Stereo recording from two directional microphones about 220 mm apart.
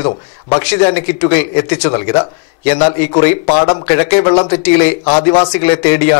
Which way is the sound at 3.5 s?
25° left (ahead or behind).